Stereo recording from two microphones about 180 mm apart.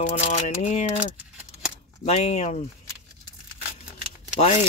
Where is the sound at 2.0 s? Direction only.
35° left (ahead or behind).